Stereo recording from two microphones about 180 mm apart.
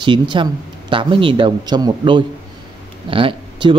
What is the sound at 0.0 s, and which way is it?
Speech, 25° right (ahead or behind).